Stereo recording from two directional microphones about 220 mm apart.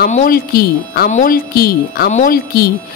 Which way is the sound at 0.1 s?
40° left (ahead or behind).